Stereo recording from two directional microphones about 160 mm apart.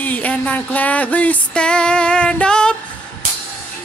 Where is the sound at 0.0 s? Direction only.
10° left (ahead or behind).